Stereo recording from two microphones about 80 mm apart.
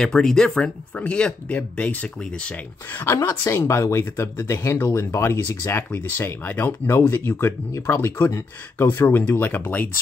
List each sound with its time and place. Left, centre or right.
0.0 s speech: centre
3.2 s speech: left